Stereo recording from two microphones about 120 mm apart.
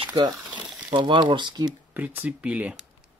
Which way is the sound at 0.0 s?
40° right (ahead or behind).